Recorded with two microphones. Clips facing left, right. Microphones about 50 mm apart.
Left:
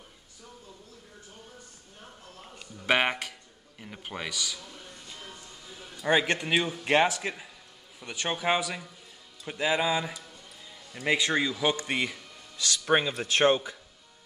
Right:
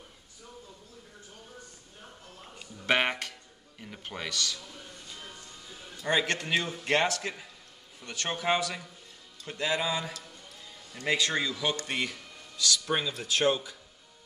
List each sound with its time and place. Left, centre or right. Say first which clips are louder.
2.9 s music: left 1 dB; centre
3.8 s a sound: left 1 dB; centre
5.7 s music: left 2 dB; centre
6.0 s a man's voice: left 3 dB; centre
12.5 s speech: left 4 dB; left